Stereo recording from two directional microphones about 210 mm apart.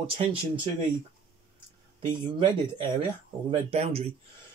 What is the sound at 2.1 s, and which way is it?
Speech, 25° right (ahead or behind).